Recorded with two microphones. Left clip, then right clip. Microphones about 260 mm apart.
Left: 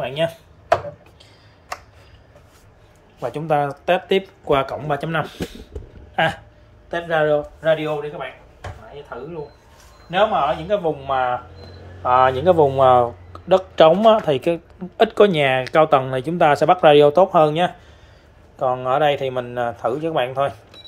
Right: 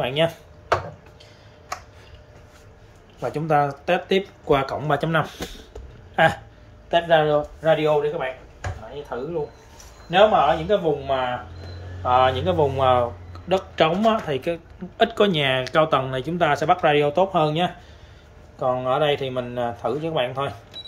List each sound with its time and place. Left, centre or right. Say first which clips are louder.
0.0 s speech: right 1 dB; centre
3.2 s speech: left 1 dB; centre
10.0 s speech: right 2 dB; centre
12.4 s speech: left 6 dB; left
13.5 s speech: left 7 dB; centre